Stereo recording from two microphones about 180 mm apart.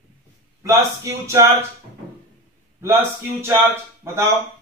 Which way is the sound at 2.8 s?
15° right (ahead or behind).